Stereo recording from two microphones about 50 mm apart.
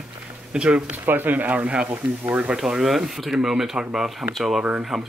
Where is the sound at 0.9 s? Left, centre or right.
Right.